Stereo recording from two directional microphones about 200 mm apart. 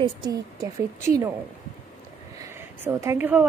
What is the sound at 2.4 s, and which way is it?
Speech, 15° right (ahead or behind).